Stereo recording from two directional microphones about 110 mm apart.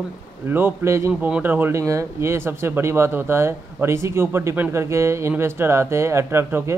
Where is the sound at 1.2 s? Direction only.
10° right (ahead or behind).